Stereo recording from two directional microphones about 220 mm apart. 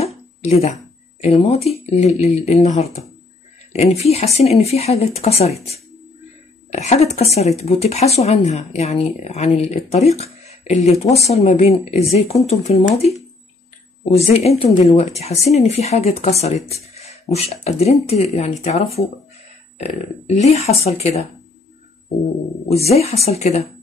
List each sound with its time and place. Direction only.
0.0 s a sound: 30° left (ahead or behind)
1.2 s speech: 30° left (ahead or behind)
22.8 s speech: 30° left (ahead or behind)